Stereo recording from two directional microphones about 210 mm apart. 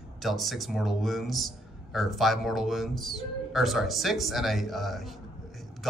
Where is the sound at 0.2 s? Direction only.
Centre (ahead or behind).